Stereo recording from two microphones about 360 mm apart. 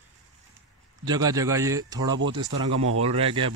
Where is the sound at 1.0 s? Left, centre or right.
Centre.